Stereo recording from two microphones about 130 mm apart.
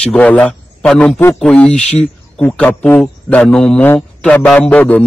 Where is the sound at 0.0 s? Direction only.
10° left (ahead or behind).